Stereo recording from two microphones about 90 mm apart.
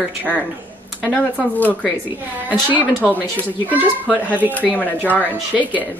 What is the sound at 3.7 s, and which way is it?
Speech, 15° right (ahead or behind).